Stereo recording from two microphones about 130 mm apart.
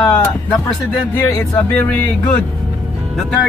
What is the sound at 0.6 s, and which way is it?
Speech, 15° left (ahead or behind).